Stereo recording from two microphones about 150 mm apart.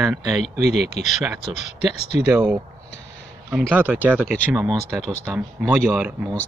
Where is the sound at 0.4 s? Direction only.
45° left (ahead or behind).